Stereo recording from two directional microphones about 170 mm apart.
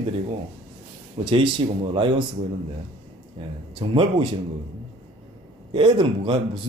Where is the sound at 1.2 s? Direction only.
25° right (ahead or behind).